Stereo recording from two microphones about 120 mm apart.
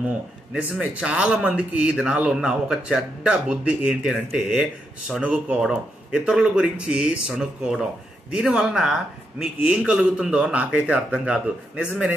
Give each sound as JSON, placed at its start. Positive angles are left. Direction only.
{"t": 0.6, "sound": "a man's voice", "side_deg": -10}